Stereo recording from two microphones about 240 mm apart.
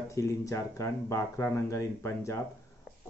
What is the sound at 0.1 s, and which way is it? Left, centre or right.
A man's voice, centre.